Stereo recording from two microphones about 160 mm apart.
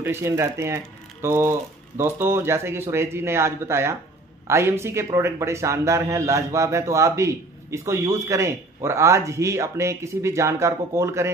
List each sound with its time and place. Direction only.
0.0 s a man's voice: 15° right (ahead or behind)